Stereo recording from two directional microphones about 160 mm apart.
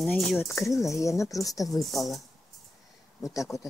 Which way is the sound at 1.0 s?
20° left (ahead or behind).